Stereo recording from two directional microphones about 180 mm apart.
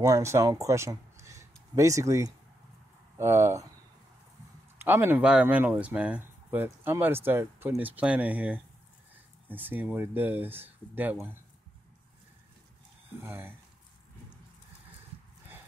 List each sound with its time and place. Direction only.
0.0 s speech: 15° right (ahead or behind)
4.7 s speech: 10° right (ahead or behind)
13.2 s speech: 10° right (ahead or behind)